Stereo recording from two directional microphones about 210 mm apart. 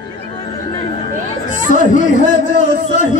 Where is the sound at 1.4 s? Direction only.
35° left (ahead or behind).